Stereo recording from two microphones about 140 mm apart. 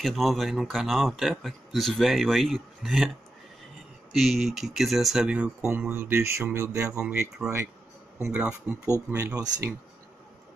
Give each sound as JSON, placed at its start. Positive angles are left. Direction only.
{"t": 0.0, "sound": "speech", "side_deg": 0}
{"t": 4.1, "sound": "speech", "side_deg": 0}
{"t": 7.1, "sound": "speech", "side_deg": -5}
{"t": 9.1, "sound": "speech", "side_deg": -25}